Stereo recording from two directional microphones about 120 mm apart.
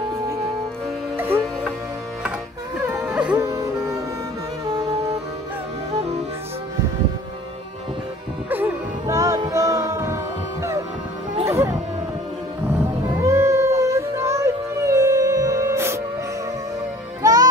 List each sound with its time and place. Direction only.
1.1 s music: 15° right (ahead or behind)
3.0 s music: 10° right (ahead or behind)
3.4 s music: 30° right (ahead or behind)
8.5 s music: 15° right (ahead or behind)
9.0 s music: 30° right (ahead or behind)
11.4 s wild animals: 25° right (ahead or behind)
12.6 s music: 15° right (ahead or behind)
13.2 s music: 25° right (ahead or behind)
17.2 s music: 30° right (ahead or behind)